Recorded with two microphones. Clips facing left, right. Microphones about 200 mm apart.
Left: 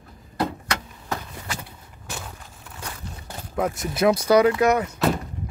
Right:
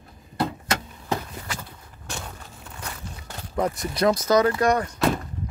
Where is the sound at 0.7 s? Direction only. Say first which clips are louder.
Right 2 dB; 25° right (ahead or behind).